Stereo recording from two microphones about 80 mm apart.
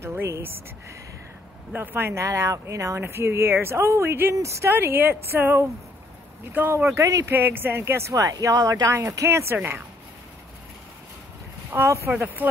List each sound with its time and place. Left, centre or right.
0.0 s a woman's voice: right
1.7 s speech: right
4.7 s a woman's voice: right
7.0 s speech: right
7.2 s a woman's voice: right
8.1 s speech: right
11.7 s speech: right
12.4 s a woman's voice: right